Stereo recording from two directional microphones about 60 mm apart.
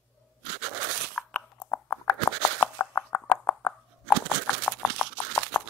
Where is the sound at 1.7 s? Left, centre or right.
Left.